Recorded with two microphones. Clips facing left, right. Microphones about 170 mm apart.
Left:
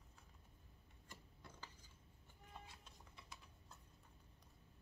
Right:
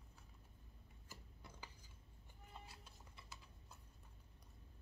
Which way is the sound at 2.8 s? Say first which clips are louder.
Even; 5° right (ahead or behind).